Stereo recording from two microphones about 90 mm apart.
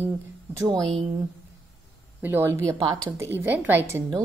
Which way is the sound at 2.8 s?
50° right (ahead or behind).